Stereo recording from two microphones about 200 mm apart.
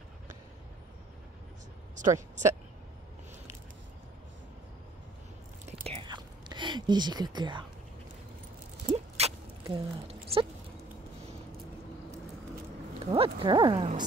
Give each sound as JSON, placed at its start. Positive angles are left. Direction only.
{"t": 2.0, "sound": "speech", "side_deg": -40}
{"t": 5.7, "sound": "whispering", "side_deg": -35}
{"t": 6.0, "sound": "whispering", "side_deg": -20}
{"t": 8.8, "sound": "a sound", "side_deg": -30}
{"t": 13.1, "sound": "speech", "side_deg": -25}